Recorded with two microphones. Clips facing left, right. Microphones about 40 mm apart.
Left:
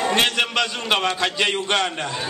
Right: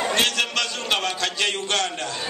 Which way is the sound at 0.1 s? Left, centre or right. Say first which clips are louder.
Left 2 dB; centre.